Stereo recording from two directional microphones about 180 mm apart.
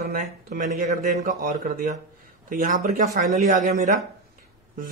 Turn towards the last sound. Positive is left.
turn(degrees=-45)  # may be behind; listen again after turning